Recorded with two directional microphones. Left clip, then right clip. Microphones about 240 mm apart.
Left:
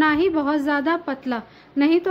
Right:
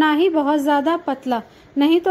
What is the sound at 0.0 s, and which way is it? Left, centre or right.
Speech, centre.